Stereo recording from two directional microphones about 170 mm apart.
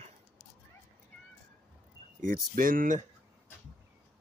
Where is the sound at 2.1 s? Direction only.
55° right (ahead or behind).